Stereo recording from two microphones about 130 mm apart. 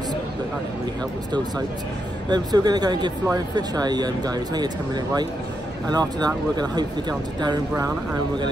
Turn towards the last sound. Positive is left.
turn(degrees=-30)  # may be behind; listen again after turning